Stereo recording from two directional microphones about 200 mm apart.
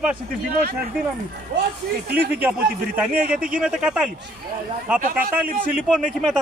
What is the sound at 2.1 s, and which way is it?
Speech, 10° right (ahead or behind).